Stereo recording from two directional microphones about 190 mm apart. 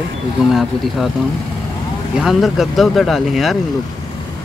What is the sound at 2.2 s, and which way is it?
Speech, centre (ahead or behind).